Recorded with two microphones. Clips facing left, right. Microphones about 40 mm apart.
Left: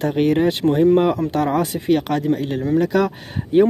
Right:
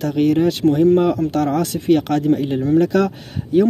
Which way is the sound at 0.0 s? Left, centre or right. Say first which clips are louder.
Right 1 dB; left.